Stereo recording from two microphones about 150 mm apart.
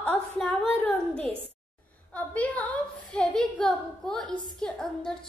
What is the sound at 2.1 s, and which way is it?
A woman's voice, 10° left (ahead or behind).